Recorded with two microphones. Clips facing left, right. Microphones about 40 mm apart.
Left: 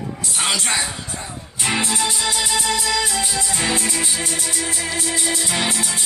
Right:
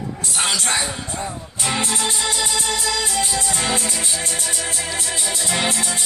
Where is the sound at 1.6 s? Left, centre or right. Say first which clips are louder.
Left 1 dB; left.